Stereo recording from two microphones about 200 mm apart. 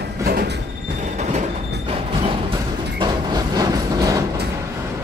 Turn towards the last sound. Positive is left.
turn(degrees=-20)  # may be behind; listen again after turning